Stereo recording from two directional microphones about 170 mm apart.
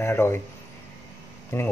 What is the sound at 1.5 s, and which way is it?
Speech, 15° left (ahead or behind).